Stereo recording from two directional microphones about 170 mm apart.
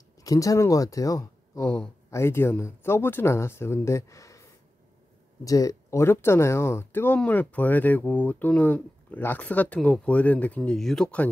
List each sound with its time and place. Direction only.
0.2 s speech: 20° left (ahead or behind); by 11.2 s 5° left (ahead or behind)